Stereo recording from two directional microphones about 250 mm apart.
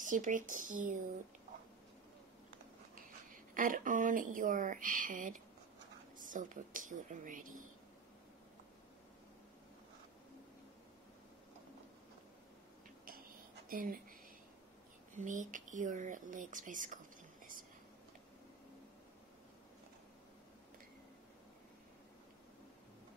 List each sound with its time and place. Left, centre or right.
0.0 s speech: right
3.3 s speech: right
13.7 s speech: right
15.1 s speech: right